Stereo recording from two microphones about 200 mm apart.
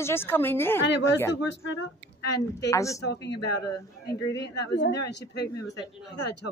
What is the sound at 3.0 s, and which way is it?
Speech, 60° left (ahead or behind).